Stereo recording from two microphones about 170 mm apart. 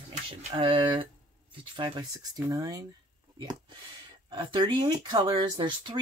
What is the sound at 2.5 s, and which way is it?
Speech, 20° right (ahead or behind).